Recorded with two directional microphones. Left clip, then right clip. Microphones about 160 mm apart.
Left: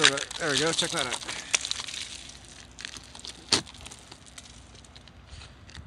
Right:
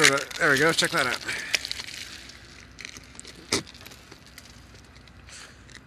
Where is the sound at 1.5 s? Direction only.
40° left (ahead or behind).